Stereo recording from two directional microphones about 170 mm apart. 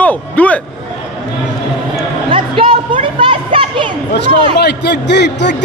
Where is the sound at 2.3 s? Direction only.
30° right (ahead or behind).